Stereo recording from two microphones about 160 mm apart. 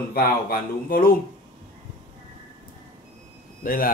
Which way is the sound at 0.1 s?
65° left (ahead or behind).